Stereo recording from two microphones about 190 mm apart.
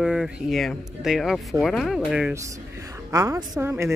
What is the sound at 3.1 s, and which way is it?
Speech, 15° right (ahead or behind).